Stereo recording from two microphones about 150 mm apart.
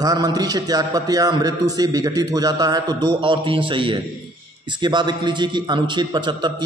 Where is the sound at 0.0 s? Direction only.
25° right (ahead or behind).